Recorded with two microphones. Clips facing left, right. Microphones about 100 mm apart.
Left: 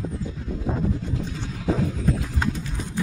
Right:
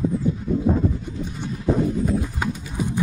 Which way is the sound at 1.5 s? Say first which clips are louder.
Right 4 dB; 90° left.